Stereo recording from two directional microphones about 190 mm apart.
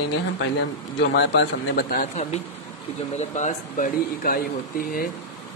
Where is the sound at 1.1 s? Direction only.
65° left (ahead or behind).